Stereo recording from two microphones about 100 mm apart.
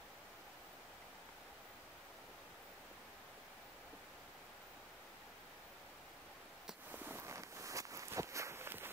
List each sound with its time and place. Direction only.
6.9 s walk: 20° right (ahead or behind)